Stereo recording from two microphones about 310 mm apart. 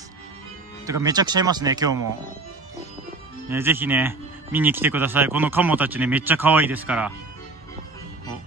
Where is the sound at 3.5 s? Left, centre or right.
Centre.